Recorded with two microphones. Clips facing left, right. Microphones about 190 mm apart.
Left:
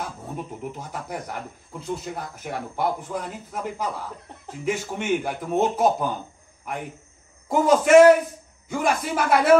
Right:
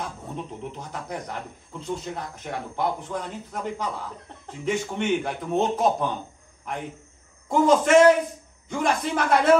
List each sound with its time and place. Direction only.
0.0 s speech: 5° left (ahead or behind)
7.4 s speech: 5° left (ahead or behind)